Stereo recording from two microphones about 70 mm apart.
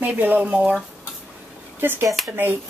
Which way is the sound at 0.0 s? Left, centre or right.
Right.